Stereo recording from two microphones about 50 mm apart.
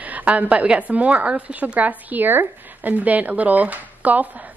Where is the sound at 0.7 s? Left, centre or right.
Right.